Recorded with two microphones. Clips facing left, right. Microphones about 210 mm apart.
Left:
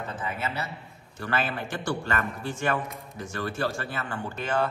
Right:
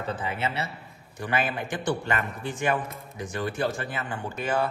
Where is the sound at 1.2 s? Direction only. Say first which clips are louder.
Right 1 dB; 15° right (ahead or behind).